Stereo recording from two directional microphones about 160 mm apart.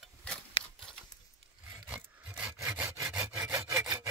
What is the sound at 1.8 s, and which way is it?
Rub, 10° right (ahead or behind).